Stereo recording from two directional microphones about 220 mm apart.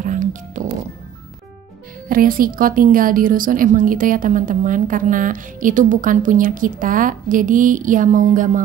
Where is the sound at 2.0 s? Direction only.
40° right (ahead or behind).